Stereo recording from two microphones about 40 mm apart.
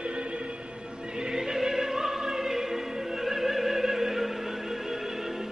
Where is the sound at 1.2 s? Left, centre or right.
Centre.